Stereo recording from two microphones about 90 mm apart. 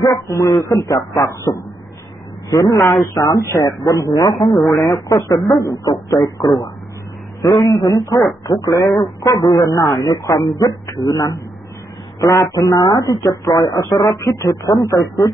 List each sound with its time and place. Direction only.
0.0 s speech: 35° left (ahead or behind)
4.4 s speech: centre (ahead or behind)
5.0 s speech: 40° left (ahead or behind)
7.7 s speech: 40° left (ahead or behind)